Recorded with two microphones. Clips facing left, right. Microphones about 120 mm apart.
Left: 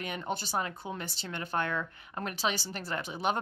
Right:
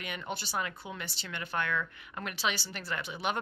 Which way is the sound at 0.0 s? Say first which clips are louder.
Left 3 dB; 35° left (ahead or behind).